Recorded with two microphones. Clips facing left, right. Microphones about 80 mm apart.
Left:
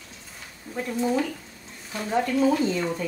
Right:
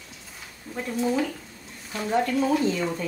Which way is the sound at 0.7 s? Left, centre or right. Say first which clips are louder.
Left 1 dB; centre.